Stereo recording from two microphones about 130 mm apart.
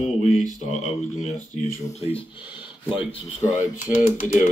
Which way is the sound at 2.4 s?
10° right (ahead or behind).